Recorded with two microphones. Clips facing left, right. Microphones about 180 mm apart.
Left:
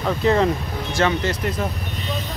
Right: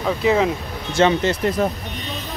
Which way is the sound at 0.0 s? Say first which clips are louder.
Even; 5° right (ahead or behind).